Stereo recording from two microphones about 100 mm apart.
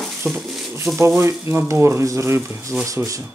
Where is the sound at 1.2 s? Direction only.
25° right (ahead or behind).